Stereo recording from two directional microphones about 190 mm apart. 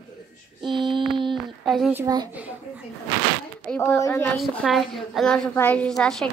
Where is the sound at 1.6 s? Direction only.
Centre (ahead or behind).